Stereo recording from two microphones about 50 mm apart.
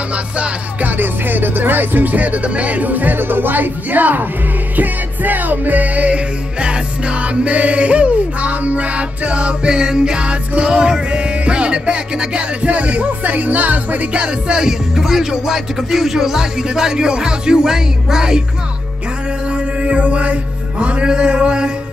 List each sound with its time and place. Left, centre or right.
0.8 s music: right
14.2 s music: centre
19.5 s mantra: right
20.8 s music: right